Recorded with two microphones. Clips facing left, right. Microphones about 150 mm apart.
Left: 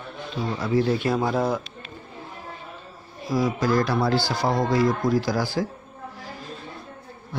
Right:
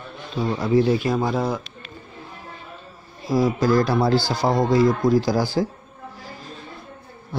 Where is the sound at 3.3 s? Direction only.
30° right (ahead or behind).